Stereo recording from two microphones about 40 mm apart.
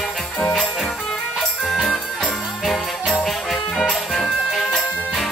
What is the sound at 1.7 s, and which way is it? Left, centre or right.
Music, centre.